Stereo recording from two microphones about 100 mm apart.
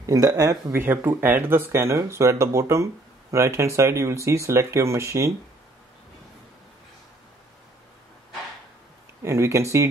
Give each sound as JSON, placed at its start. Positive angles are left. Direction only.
{"t": 0.0, "sound": "speech", "side_deg": -35}
{"t": 9.2, "sound": "speech", "side_deg": -30}